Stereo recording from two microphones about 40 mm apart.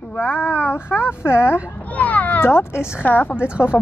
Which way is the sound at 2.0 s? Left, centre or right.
Left.